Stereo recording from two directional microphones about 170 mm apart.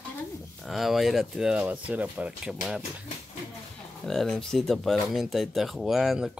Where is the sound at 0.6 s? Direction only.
Centre (ahead or behind).